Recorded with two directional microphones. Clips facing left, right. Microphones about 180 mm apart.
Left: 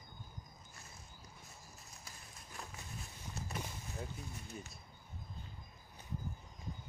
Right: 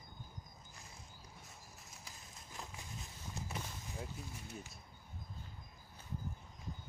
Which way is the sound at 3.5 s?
5° right (ahead or behind).